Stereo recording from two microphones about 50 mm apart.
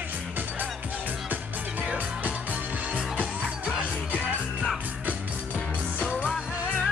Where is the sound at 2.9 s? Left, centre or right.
Right.